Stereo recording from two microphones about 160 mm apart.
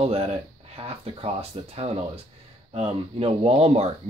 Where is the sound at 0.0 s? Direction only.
40° right (ahead or behind).